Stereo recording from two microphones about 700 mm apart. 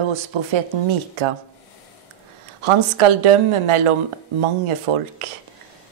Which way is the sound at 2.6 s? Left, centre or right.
Right.